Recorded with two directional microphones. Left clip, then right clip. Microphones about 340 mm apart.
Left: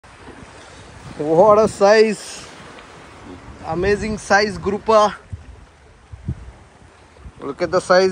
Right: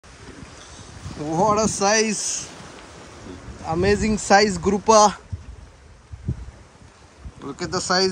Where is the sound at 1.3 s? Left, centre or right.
Centre.